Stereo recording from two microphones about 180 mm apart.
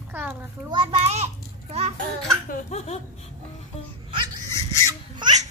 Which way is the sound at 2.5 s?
40° left (ahead or behind).